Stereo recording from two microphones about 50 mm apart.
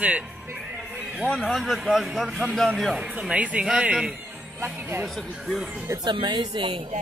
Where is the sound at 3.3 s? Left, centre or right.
Right.